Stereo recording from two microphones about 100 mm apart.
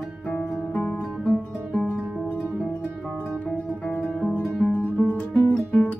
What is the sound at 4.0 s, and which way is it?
Music, centre (ahead or behind).